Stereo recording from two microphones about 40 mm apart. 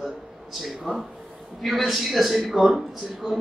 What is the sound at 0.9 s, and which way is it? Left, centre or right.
Speech, centre.